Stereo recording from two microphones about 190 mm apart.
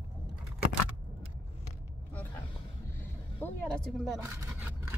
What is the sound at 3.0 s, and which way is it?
Vehicle, 10° left (ahead or behind).